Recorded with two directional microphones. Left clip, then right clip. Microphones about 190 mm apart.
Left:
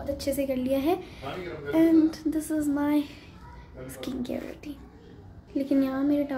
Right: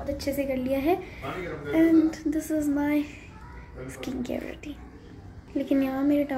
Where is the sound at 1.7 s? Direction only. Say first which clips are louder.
Even; 20° left (ahead or behind).